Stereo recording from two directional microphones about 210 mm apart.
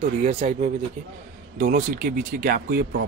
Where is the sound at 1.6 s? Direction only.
40° right (ahead or behind).